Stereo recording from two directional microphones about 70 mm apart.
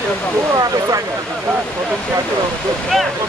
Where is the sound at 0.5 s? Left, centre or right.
Right.